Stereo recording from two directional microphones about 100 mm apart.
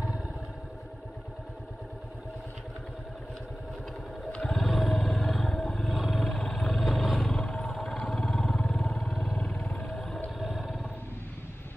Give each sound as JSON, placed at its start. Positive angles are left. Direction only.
{"t": 4.3, "sound": "vehicle", "side_deg": 5}